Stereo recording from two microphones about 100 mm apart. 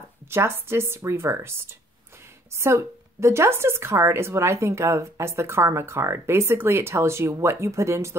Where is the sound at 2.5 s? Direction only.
30° right (ahead or behind).